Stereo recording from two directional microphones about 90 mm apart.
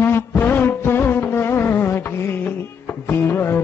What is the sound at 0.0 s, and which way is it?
Music, 25° left (ahead or behind).